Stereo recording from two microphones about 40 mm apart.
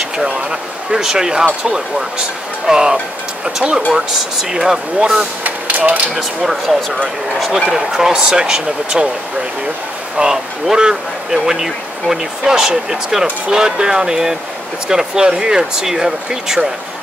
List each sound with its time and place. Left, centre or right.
0.2 s speech: centre
1.4 s speech: right
5.4 s a sound: right
6.1 s speech: centre
7.6 s speech: centre
10.2 s speech: right